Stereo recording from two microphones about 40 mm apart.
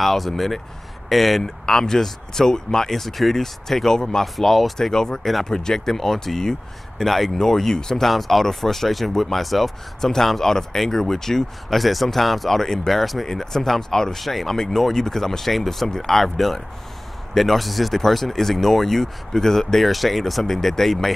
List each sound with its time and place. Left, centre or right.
0.0 s speech: centre
1.4 s speech: centre
4.9 s speech: centre